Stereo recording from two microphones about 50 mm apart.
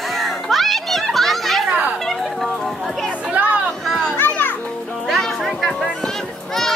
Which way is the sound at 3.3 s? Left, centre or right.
Right.